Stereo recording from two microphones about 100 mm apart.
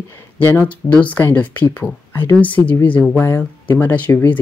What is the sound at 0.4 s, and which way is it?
Speech, 20° left (ahead or behind).